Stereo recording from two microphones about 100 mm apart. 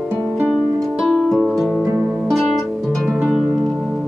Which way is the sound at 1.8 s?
20° right (ahead or behind).